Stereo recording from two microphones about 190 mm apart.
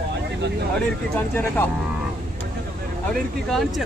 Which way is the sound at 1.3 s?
10° left (ahead or behind).